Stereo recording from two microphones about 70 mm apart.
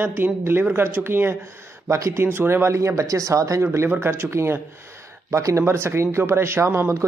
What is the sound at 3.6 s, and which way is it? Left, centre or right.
A man's voice, right.